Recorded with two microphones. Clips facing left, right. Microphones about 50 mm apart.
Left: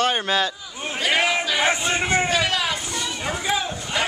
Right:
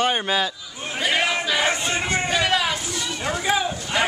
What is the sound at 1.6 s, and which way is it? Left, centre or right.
Crowd, centre.